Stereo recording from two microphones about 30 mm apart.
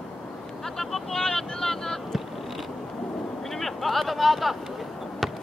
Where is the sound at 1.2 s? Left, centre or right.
Left.